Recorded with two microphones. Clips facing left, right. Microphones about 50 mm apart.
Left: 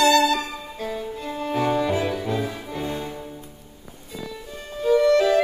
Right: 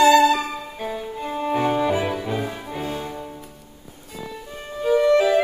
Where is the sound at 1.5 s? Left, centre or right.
Right.